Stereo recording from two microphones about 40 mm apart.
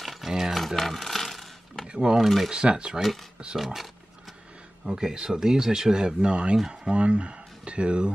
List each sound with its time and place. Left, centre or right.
0.0 s a sound: centre
0.6 s coin: centre
1.9 s speech: centre
2.2 s speech: centre
2.5 s speech: right
3.5 s speech: centre; by 8.1 s right